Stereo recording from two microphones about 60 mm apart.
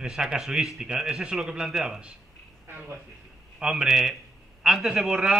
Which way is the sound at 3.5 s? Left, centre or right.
Centre.